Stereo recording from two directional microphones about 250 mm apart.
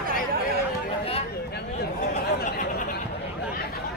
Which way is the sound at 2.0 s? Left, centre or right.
Left.